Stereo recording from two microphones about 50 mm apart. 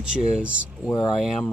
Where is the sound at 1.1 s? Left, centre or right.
Centre.